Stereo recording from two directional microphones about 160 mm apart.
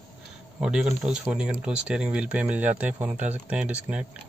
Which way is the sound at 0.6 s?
5° right (ahead or behind).